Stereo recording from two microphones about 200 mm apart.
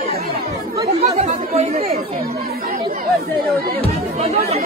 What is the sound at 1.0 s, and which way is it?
Speech, 35° right (ahead or behind).